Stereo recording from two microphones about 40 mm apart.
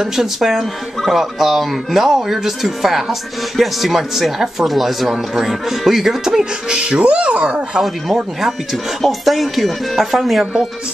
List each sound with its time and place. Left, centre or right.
0.0 s speech: centre; by 7.8 s right
7.8 s speech: centre